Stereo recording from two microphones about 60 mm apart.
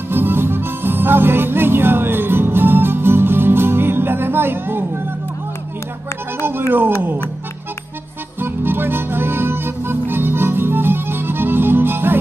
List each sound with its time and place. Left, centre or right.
0.1 s music: right
8.4 s music: right